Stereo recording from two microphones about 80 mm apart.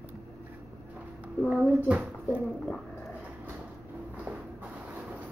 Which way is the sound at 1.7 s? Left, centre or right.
Centre.